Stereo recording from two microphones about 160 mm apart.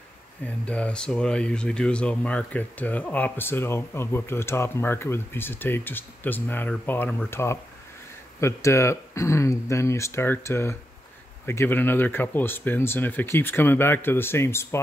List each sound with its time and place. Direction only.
0.4 s speech: 10° left (ahead or behind)